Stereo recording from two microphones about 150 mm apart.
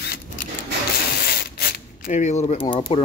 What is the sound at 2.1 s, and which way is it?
Speech, 50° left (ahead or behind).